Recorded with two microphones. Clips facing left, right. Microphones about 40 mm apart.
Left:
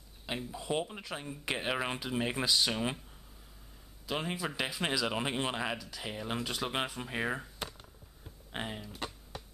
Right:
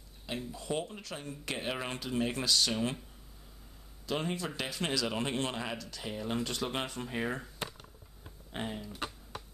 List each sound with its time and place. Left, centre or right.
0.4 s speech: centre
4.0 s speech: centre
8.5 s speech: centre
8.8 s computer keyboard: centre